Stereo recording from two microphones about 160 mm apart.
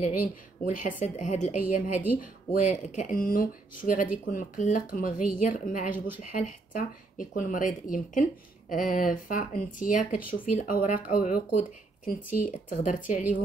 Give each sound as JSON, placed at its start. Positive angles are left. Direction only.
{"t": 0.0, "sound": "speech", "side_deg": 55}
{"t": 1.1, "sound": "speech", "side_deg": 45}